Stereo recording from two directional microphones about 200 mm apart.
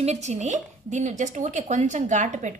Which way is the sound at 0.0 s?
35° right (ahead or behind).